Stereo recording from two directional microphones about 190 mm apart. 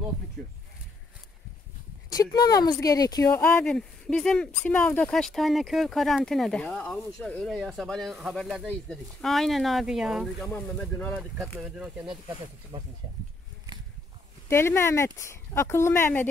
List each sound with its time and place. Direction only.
0.4 s a sound: 5° left (ahead or behind)
2.0 s speech: 20° left (ahead or behind); by 12.2 s 5° right (ahead or behind)
12.7 s speech: 25° right (ahead or behind)
14.5 s speech: 15° left (ahead or behind)